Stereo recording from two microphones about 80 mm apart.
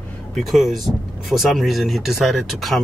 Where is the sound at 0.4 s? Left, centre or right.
Centre.